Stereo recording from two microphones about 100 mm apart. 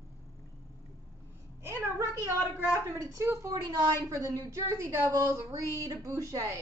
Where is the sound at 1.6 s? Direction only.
25° right (ahead or behind).